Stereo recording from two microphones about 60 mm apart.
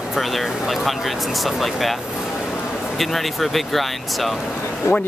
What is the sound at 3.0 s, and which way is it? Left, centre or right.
Speech, centre.